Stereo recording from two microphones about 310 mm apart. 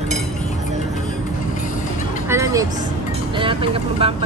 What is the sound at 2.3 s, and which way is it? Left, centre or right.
Vehicle, centre.